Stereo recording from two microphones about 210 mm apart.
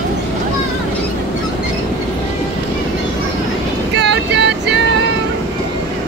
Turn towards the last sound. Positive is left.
turn(degrees=-55)  # may be behind; listen again after turning